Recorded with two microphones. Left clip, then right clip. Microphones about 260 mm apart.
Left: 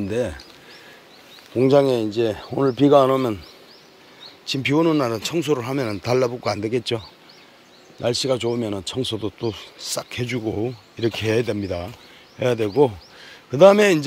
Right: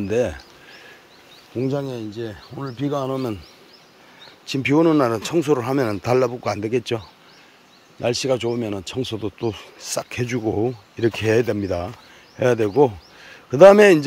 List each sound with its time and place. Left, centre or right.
0.0 s speech: centre
1.6 s speech: centre
4.5 s speech: centre